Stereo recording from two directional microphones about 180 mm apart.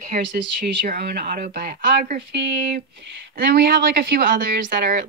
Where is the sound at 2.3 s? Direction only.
75° right (ahead or behind).